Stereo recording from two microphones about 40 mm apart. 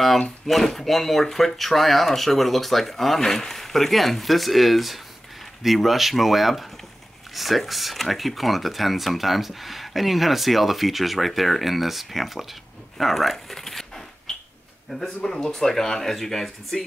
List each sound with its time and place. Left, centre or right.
0.5 s speech: centre
12.9 s a sound: centre
14.9 s speech: centre